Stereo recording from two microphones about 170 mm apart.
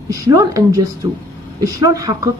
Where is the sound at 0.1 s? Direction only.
20° right (ahead or behind).